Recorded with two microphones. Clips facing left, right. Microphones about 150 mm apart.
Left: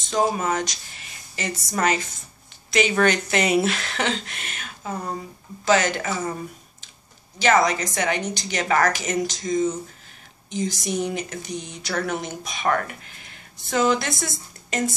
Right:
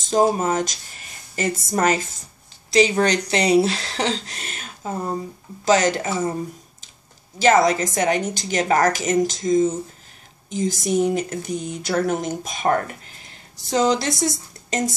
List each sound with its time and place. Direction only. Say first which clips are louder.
0.1 s speech: right 4 dB; 45° right (ahead or behind)
2.7 s speech: right 3 dB; 35° right (ahead or behind)
5.7 s speech: right 2 dB; 40° right (ahead or behind)
6.0 s speech: right 3 dB; 25° right (ahead or behind)
7.3 s speech: right 3 dB; 40° right (ahead or behind)
9.2 s a sound: right 4 dB; 45° right (ahead or behind)
11.5 s speech: right 6 dB; 5° right (ahead or behind)
11.9 s speech: right 5 dB; 40° right (ahead or behind)